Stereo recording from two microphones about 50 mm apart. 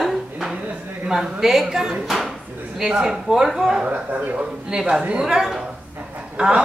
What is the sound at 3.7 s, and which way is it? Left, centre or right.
Speech, centre.